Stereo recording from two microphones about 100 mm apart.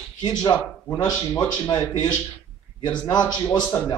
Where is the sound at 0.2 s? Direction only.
45° left (ahead or behind).